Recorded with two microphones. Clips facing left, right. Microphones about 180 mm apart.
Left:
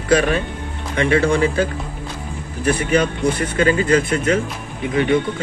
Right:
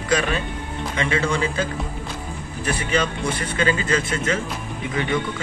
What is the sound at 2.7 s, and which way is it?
Speech, 55° left (ahead or behind).